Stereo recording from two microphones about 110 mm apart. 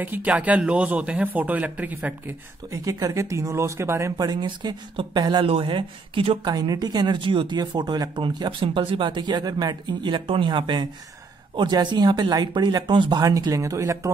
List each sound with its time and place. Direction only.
0.0 s a man's voice: 15° right (ahead or behind)
2.7 s speech: 30° right (ahead or behind)
4.2 s a woman's voice: 40° right (ahead or behind)
6.5 s speech: 35° right (ahead or behind)
10.0 s a woman's voice: 50° right (ahead or behind)
13.2 s speech: 30° right (ahead or behind)